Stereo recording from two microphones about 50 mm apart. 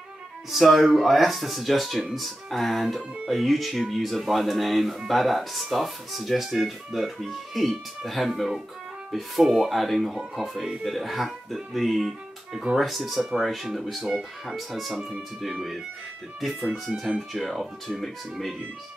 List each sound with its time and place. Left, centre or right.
0.5 s speech: centre
15.0 s speech: centre
16.7 s speech: centre